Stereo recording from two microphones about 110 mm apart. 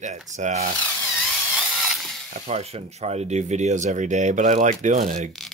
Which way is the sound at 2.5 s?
70° right (ahead or behind).